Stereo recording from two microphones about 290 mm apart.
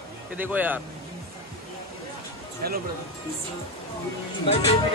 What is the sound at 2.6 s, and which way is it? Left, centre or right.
Speech, right.